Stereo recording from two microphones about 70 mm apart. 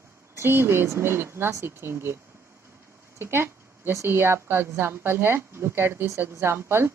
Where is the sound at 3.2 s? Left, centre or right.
Right.